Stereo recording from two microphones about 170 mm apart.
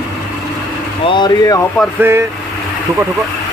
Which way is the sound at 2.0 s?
15° right (ahead or behind).